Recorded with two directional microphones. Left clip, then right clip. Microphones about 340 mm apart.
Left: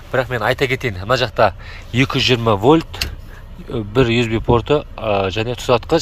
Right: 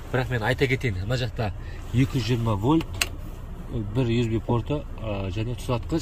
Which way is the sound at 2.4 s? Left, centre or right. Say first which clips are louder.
Left 9 dB; left.